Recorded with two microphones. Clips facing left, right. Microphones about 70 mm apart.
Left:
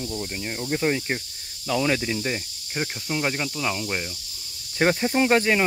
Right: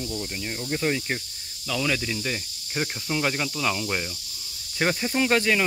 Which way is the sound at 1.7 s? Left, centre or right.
Left.